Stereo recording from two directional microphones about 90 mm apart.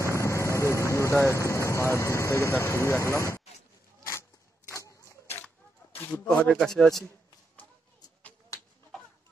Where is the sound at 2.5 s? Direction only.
30° left (ahead or behind).